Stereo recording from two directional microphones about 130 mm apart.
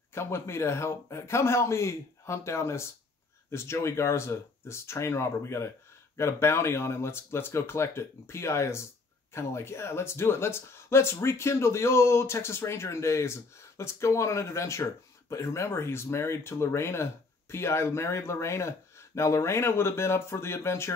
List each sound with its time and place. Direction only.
0.1 s speech: 20° left (ahead or behind)